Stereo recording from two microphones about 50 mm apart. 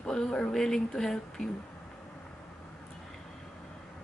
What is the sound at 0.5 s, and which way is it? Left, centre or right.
Speech, centre.